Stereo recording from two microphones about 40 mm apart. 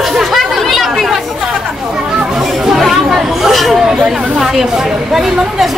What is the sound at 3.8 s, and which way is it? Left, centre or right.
A woman's voice, centre.